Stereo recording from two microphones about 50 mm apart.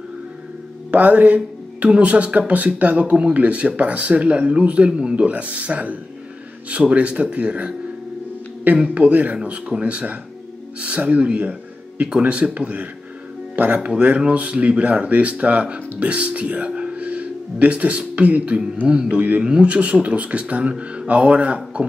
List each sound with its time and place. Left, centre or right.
0.9 s a man's voice: right
8.7 s a man's voice: right
13.8 s a man's voice: right
19.4 s a man's voice: right